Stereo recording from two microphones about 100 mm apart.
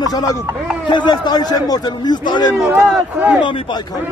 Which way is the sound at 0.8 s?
50° left (ahead or behind).